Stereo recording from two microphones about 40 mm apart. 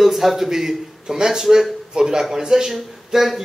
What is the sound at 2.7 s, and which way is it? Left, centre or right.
Speech, centre.